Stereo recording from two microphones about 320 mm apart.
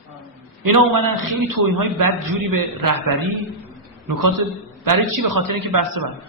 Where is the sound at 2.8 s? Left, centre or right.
Right.